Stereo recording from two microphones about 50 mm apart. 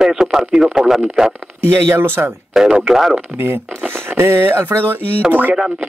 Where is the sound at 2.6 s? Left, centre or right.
Centre.